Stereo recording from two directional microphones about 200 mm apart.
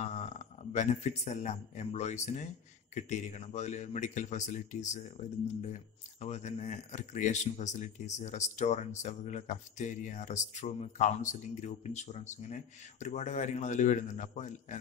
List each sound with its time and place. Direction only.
0.0 s speech: 35° left (ahead or behind)
6.2 s speech: 35° left (ahead or behind)